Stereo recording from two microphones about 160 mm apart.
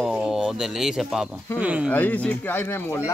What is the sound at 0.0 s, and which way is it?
Speech, 5° right (ahead or behind).